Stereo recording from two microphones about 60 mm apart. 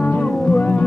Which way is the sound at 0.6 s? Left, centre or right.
Left.